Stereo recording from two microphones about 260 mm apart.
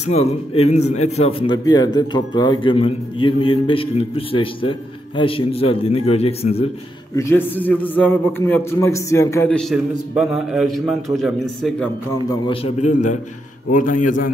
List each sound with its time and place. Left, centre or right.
0.0 s a man's voice: left
7.2 s a man's voice: centre
12.3 s a man's voice: left